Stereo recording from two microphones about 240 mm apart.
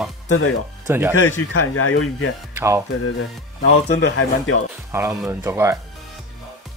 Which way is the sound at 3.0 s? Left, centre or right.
Left.